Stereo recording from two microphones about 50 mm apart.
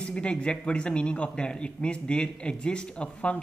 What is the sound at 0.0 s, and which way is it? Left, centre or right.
Speech, left.